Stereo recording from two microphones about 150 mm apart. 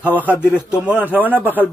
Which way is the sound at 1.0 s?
10° right (ahead or behind).